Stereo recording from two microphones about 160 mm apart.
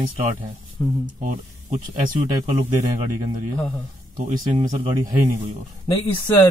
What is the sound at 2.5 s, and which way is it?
Speech, 45° right (ahead or behind).